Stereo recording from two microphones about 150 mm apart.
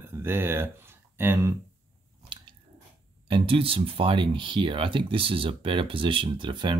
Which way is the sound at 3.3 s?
35° right (ahead or behind).